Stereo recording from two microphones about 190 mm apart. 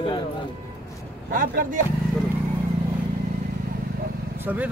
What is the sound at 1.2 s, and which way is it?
Speech, 45° right (ahead or behind).